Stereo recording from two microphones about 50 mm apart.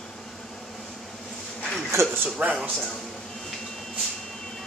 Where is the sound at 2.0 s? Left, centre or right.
Right.